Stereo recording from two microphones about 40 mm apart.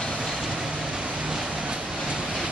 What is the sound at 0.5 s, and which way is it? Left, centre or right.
Vehicle, centre.